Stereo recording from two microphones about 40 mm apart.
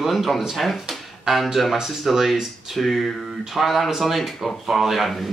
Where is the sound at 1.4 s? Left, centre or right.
Centre.